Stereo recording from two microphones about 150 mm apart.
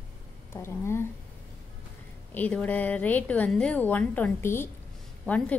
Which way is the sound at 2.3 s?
10° left (ahead or behind).